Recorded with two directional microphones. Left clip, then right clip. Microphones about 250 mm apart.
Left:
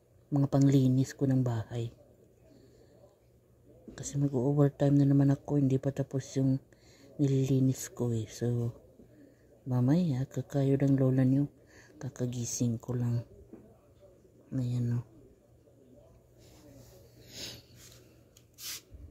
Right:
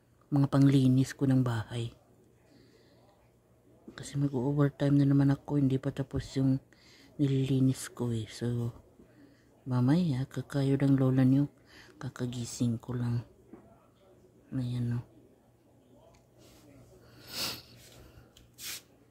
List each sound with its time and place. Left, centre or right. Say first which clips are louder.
0.3 s speech: right 1 dB; centre
3.9 s speech: left 1 dB; centre
9.7 s speech: right 1 dB; centre
14.5 s speech: even; centre
17.3 s a sound: right 8 dB; right